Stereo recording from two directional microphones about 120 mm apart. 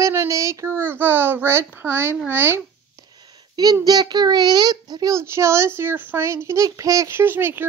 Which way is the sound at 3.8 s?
35° right (ahead or behind).